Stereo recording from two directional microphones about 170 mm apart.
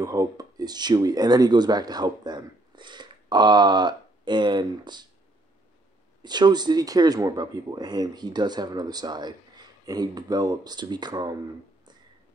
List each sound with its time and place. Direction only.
0.0 s speech: 20° right (ahead or behind)
6.2 s speech: 25° right (ahead or behind)